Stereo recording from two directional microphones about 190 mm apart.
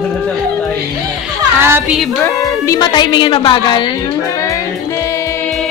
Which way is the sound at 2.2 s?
15° left (ahead or behind).